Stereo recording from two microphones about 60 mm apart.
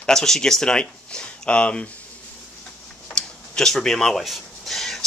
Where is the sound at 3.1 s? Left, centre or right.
Centre.